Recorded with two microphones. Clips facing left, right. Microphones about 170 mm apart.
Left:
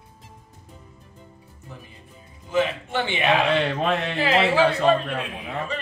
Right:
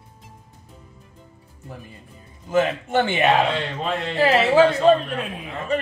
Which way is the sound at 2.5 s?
45° right (ahead or behind).